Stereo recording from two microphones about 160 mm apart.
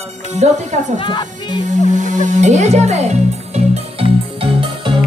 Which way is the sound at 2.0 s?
50° right (ahead or behind).